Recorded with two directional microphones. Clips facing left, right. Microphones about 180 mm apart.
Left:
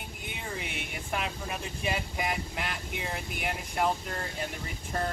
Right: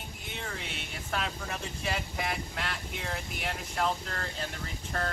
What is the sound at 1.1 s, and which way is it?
Speech, 15° left (ahead or behind).